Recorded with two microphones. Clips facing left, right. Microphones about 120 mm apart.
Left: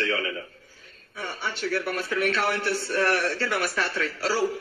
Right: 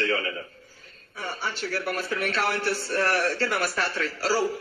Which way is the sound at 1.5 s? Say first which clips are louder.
Left 4 dB; 40° right (ahead or behind).